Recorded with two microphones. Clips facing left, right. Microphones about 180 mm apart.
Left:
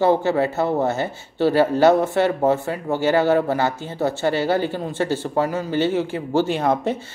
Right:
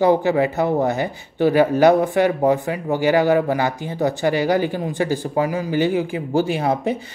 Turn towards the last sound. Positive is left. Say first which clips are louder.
# even
turn(degrees=-10)  # may be behind; listen again after turning